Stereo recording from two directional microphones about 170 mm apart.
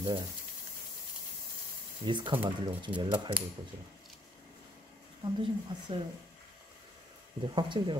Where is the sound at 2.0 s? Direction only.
25° right (ahead or behind).